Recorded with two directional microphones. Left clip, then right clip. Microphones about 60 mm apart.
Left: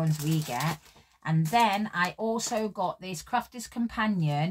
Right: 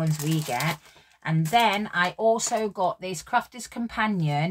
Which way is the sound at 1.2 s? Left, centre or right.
Centre.